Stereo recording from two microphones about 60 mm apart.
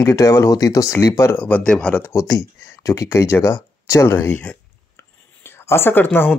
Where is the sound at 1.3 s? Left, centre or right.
Left.